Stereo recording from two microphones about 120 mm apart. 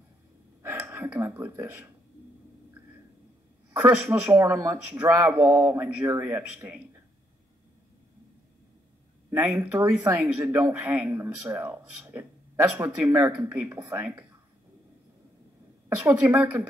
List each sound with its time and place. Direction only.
0.6 s speech: 20° right (ahead or behind)
3.7 s speech: 20° right (ahead or behind)
9.6 s speech: 20° right (ahead or behind)
16.0 s speech: 15° right (ahead or behind)